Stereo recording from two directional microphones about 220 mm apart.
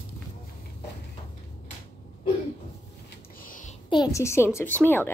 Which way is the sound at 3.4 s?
35° left (ahead or behind).